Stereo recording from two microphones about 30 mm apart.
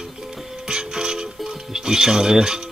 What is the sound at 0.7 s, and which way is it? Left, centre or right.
Music, right.